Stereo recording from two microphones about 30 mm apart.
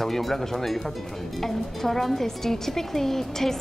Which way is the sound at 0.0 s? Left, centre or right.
Centre.